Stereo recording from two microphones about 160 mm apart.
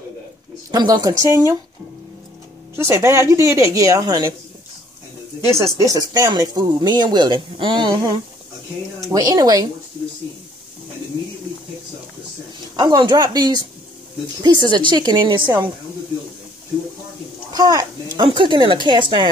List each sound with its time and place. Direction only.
0.7 s speech: 25° right (ahead or behind)
2.7 s speech: 15° right (ahead or behind)
5.5 s speech: 20° right (ahead or behind)
12.7 s speech: 25° right (ahead or behind)
17.5 s speech: 25° right (ahead or behind)